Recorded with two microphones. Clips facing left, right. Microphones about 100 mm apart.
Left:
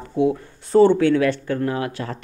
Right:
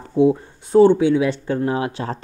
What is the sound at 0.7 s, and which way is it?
Speech, 15° right (ahead or behind).